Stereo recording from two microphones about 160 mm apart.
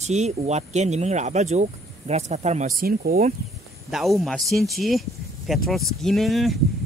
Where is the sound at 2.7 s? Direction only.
65° right (ahead or behind).